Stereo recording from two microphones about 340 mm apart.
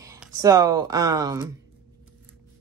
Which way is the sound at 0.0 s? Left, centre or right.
Centre.